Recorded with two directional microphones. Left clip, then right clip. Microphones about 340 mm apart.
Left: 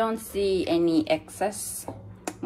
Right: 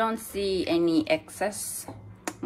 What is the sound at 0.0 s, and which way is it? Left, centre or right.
A woman's voice, centre.